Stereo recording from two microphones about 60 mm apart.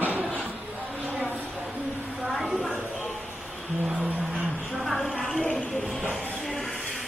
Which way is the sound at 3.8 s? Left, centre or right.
Centre.